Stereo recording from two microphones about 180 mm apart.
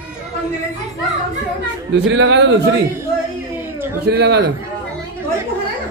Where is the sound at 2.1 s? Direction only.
85° right.